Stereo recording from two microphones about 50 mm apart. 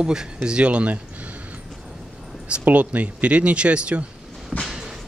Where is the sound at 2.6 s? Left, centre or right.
Right.